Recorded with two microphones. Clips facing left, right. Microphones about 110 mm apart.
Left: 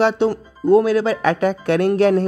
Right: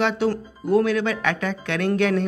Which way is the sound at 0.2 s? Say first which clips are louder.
Left 5 dB; 30° left (ahead or behind).